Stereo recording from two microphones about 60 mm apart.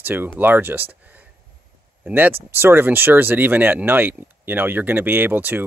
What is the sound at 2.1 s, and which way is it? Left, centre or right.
Speech, right.